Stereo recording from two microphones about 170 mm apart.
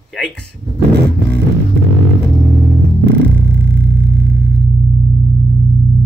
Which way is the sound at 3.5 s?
80° right.